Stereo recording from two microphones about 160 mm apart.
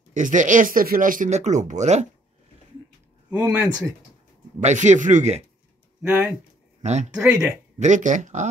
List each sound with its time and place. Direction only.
0.1 s speech: 50° right (ahead or behind)
3.3 s speech: 10° right (ahead or behind)
4.6 s speech: 50° right (ahead or behind)
6.0 s speech: 15° right (ahead or behind)
6.8 s speech: 45° right (ahead or behind)
7.1 s speech: 5° right (ahead or behind)
7.8 s speech: 50° right (ahead or behind)